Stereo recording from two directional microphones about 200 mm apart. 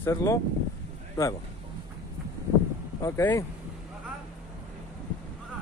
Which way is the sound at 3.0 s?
15° left (ahead or behind).